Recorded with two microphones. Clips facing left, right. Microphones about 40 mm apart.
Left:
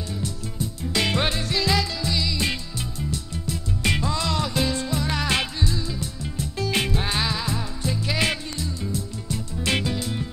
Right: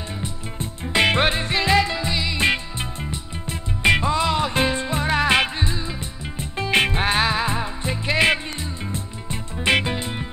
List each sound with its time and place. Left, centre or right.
0.6 s music: right